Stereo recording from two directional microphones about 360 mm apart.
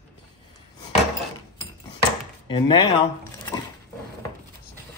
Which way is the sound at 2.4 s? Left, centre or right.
Centre.